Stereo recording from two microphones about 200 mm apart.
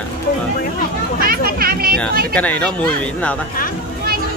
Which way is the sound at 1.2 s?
45° right (ahead or behind).